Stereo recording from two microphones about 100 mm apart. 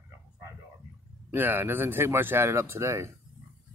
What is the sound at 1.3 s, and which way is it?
Speech, 20° right (ahead or behind).